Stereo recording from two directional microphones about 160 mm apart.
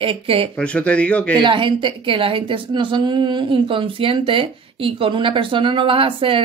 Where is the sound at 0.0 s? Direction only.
35° right (ahead or behind).